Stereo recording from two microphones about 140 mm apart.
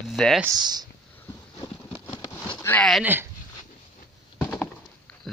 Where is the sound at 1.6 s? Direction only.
25° left (ahead or behind).